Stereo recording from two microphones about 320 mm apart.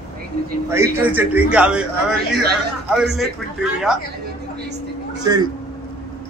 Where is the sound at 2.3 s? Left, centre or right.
Right.